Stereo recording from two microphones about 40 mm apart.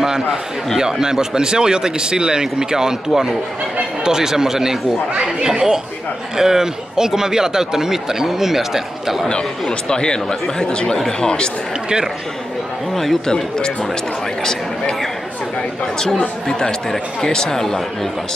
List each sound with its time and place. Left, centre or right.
0.0 s a sound: centre
0.7 s speech: centre
9.3 s speech: left
12.9 s a man's voice: centre
14.4 s speech: centre
16.4 s speech: centre